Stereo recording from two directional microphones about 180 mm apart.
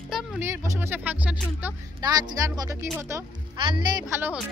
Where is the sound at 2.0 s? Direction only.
20° right (ahead or behind).